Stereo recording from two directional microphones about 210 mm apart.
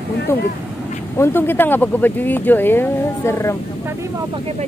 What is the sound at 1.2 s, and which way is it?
Speech, 10° left (ahead or behind).